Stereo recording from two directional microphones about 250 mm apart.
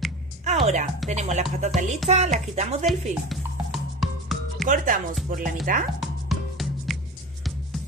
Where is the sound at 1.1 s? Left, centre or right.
Right.